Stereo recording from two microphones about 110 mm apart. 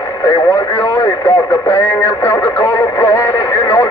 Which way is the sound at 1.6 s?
15° left (ahead or behind).